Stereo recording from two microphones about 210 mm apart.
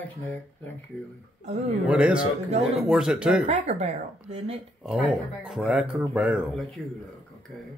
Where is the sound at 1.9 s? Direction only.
5° right (ahead or behind).